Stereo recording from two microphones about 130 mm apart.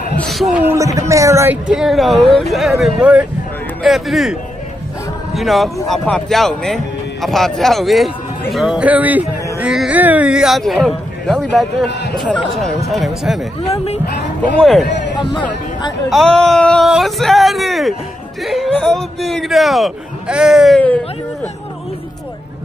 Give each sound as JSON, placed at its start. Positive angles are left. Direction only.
{"t": 0.2, "sound": "speech", "side_deg": 0}
{"t": 0.6, "sound": "speech", "side_deg": -20}
{"t": 1.7, "sound": "speech", "side_deg": 0}
{"t": 14.6, "sound": "speech", "side_deg": 0}
{"t": 15.1, "sound": "speech", "side_deg": 35}
{"t": 16.1, "sound": "speech", "side_deg": 5}